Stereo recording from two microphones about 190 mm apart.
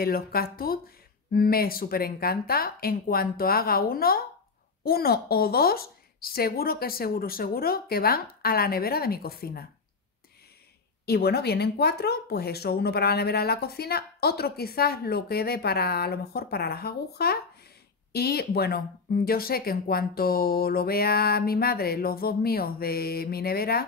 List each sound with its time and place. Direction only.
0.0 s speech: 50° left (ahead or behind)
11.1 s speech: 60° left (ahead or behind)